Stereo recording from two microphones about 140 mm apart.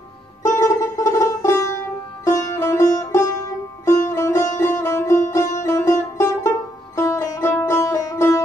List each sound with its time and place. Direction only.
0.9 s music: 25° left (ahead or behind)